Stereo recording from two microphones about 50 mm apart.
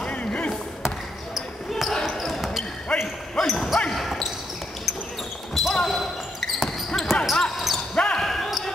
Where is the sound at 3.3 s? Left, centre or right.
Centre.